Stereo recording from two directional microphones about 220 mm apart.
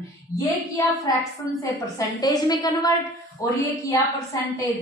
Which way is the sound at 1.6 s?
15° left (ahead or behind).